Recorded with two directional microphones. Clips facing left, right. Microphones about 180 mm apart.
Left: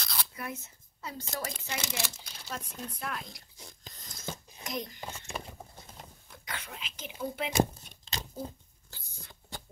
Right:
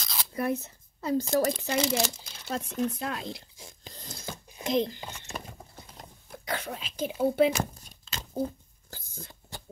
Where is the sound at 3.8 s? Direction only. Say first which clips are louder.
Right 7 dB; 30° right (ahead or behind).